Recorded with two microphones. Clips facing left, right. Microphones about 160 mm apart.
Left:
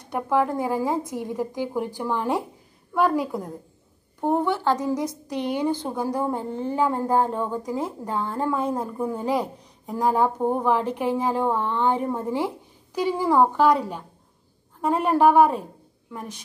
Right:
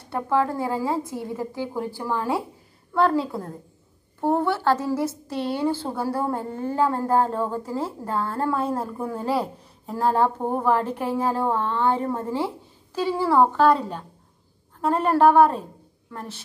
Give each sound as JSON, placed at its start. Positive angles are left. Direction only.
{"t": 0.0, "sound": "a woman's voice", "side_deg": 15}